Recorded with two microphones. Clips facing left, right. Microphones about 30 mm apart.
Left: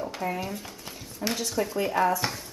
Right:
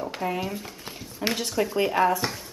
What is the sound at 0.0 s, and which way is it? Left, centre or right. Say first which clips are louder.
Speech: right 2 dB; centre.